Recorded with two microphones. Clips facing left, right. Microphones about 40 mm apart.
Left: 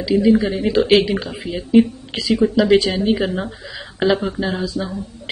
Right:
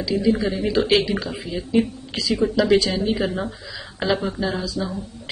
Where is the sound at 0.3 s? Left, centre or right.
Left.